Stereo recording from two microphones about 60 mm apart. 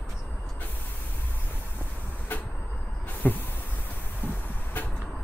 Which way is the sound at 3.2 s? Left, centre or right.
Left.